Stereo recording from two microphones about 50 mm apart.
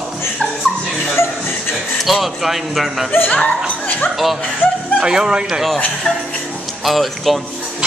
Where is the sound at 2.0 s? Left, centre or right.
Centre.